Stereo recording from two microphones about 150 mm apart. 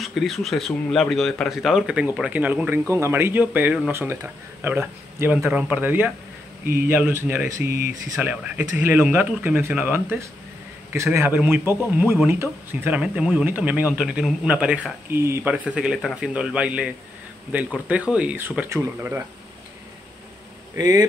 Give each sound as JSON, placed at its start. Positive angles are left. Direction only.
{"t": 0.0, "sound": "speech", "side_deg": 0}
{"t": 20.7, "sound": "speech", "side_deg": -20}